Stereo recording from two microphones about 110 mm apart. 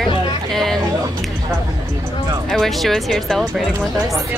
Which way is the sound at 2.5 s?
5° left (ahead or behind).